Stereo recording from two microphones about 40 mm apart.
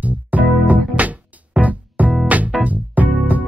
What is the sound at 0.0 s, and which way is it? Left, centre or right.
Music, right.